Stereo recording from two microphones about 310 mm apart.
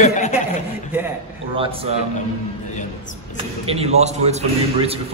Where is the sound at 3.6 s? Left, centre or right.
Centre.